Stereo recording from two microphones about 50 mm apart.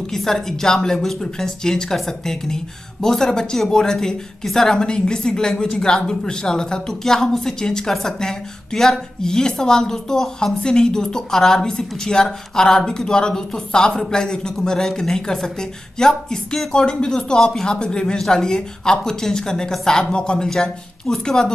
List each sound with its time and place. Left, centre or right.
0.1 s a woman's voice: centre